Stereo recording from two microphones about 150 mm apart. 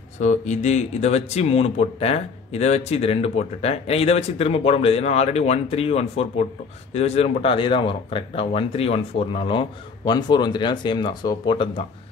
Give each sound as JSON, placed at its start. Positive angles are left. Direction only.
{"t": 0.2, "sound": "speech", "side_deg": 55}